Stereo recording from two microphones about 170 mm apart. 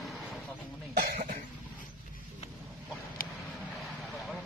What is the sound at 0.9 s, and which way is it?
Cough, 65° right (ahead or behind).